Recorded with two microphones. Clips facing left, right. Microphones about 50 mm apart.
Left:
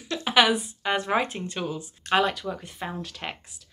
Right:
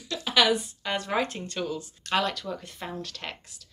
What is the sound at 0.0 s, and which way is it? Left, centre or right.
Speech, left.